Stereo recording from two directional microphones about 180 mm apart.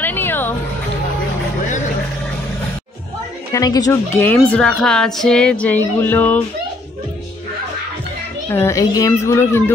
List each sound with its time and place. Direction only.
0.0 s music: 10° left (ahead or behind)
3.5 s speech: 20° left (ahead or behind)
8.5 s speech: 15° left (ahead or behind)